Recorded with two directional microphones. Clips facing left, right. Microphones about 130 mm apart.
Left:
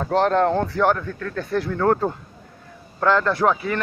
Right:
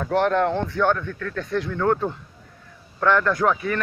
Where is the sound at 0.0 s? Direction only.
30° left (ahead or behind).